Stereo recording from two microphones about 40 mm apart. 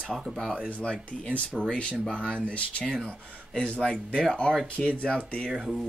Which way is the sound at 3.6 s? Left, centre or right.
Centre.